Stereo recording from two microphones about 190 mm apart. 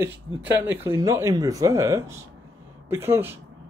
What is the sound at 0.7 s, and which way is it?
Speech, 15° right (ahead or behind).